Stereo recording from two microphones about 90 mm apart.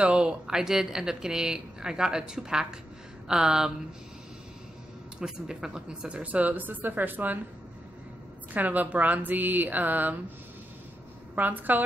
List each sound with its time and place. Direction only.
0.0 s speech: 10° right (ahead or behind)
5.2 s speech: 10° right (ahead or behind)
8.5 s speech: 20° right (ahead or behind)
11.3 s speech: 20° right (ahead or behind)